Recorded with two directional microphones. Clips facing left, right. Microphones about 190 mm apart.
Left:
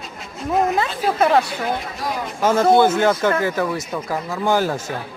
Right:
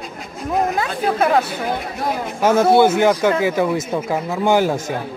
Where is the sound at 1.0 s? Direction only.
Centre (ahead or behind).